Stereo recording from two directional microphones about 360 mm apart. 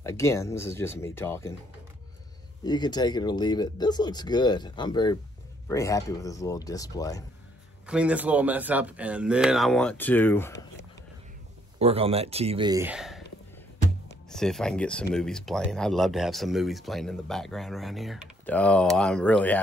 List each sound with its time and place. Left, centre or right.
0.0 s speech: centre
2.6 s speech: centre
7.8 s speech: centre
11.8 s speech: centre
14.3 s speech: centre